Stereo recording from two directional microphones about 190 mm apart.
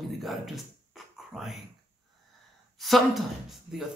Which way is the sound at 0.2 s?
Centre (ahead or behind).